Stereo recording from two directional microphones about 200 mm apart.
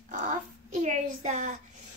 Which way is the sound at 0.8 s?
40° right (ahead or behind).